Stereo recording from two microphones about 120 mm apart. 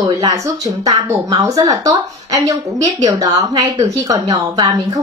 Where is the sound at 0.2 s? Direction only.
30° right (ahead or behind).